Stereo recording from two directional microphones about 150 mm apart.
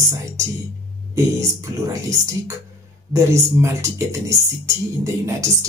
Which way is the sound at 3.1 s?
20° right (ahead or behind).